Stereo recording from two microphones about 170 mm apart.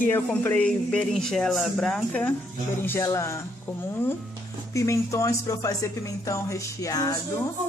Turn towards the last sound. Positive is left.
turn(degrees=20)  # may be behind; listen again after turning